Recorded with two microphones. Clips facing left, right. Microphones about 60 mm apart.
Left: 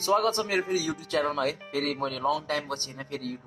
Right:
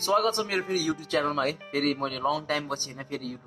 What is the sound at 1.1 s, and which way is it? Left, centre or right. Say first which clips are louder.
Speech: left 1 dB; right.